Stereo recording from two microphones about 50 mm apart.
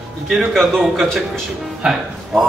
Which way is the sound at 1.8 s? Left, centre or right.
Centre.